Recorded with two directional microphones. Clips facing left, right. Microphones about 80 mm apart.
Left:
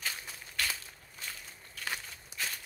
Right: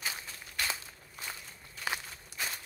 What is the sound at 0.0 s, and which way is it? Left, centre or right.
Walk, centre.